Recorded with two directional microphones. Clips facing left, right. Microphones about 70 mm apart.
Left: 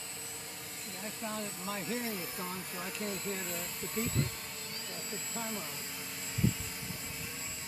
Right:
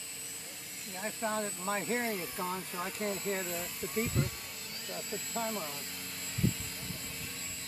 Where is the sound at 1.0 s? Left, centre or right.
Right.